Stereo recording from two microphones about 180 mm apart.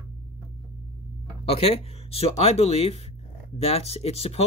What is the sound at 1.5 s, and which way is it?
Speech, 35° left (ahead or behind).